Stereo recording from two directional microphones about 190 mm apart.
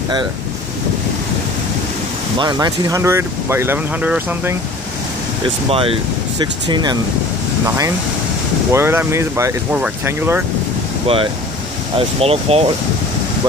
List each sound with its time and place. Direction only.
2.3 s speech: 20° right (ahead or behind)
5.7 s speech: 30° right (ahead or behind); by 10.4 s 10° right (ahead or behind)
12.2 s speech: 30° right (ahead or behind)